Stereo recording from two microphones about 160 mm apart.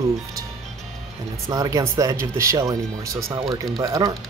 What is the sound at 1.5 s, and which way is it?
Speech, 20° right (ahead or behind).